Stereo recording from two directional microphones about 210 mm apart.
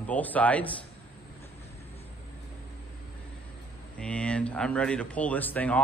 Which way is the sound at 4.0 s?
5° left (ahead or behind).